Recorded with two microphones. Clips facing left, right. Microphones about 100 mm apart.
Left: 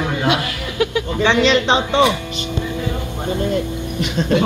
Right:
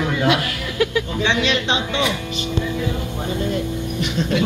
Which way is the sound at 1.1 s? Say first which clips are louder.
Left 7 dB; 55° left (ahead or behind).